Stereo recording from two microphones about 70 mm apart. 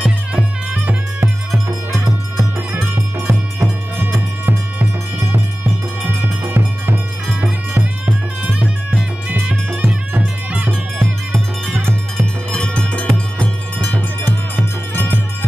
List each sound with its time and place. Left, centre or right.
0.0 s music: centre
1.2 s music: right; by 8.6 s centre
9.8 s music: right
12.4 s music: centre